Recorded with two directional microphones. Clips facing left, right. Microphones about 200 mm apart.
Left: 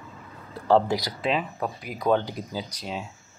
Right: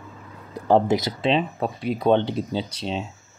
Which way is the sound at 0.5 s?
20° right (ahead or behind).